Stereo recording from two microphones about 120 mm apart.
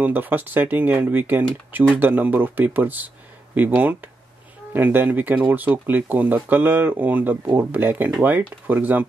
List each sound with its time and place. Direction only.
0.0 s speech: 15° right (ahead or behind)